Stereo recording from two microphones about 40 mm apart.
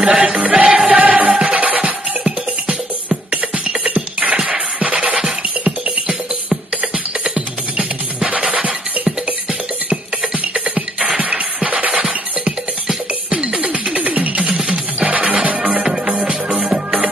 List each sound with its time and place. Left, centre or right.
0.0 s music: right
3.8 s music: right
8.3 s music: right
10.5 s music: right
13.3 s music: right
14.5 s music: right
15.0 s music: right